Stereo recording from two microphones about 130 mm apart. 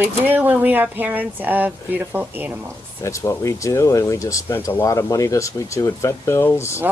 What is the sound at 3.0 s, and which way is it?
Speech, 20° left (ahead or behind).